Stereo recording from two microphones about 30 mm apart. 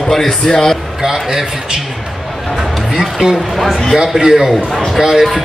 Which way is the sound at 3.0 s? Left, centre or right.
Right.